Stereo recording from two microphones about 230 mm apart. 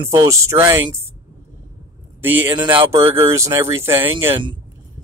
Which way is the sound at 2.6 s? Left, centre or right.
Centre.